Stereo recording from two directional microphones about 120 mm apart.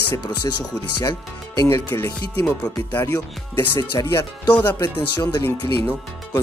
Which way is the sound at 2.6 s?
15° left (ahead or behind).